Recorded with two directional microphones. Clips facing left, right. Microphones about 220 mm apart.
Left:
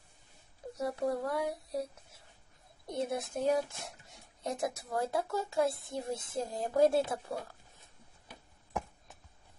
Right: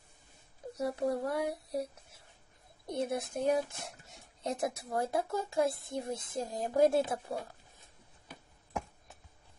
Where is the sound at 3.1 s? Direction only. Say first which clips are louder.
Even; 15° right (ahead or behind).